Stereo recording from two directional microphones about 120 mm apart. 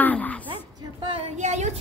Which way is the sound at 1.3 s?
70° right (ahead or behind).